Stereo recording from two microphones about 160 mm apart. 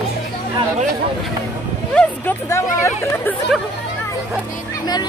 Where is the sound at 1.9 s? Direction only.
5° left (ahead or behind).